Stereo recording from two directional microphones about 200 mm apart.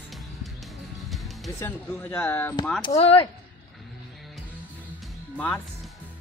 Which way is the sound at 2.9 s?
30° left (ahead or behind).